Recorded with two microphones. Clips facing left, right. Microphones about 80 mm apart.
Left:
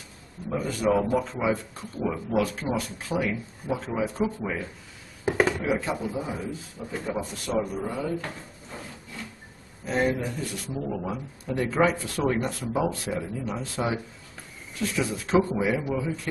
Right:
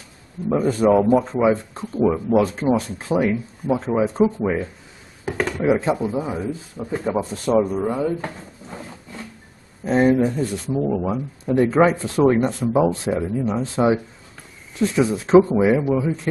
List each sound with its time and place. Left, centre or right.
0.5 s speech: right
5.2 s a sound: centre
5.8 s speech: right
9.8 s speech: right